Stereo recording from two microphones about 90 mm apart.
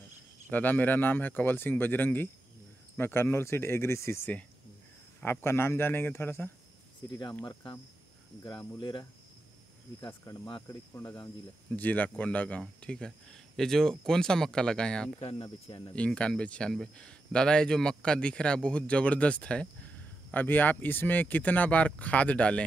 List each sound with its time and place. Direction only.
0.5 s speech: 20° left (ahead or behind)
5.2 s speech: 25° left (ahead or behind)
8.7 s speech: 65° left (ahead or behind)
10.3 s speech: 45° left (ahead or behind)
10.7 s speech: 30° left (ahead or behind)
11.7 s speech: 15° left (ahead or behind)
15.1 s speech: 70° left (ahead or behind)
15.9 s speech: 15° left (ahead or behind)